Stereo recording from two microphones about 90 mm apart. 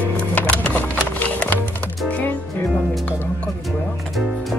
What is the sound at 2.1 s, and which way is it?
Music, 20° left (ahead or behind).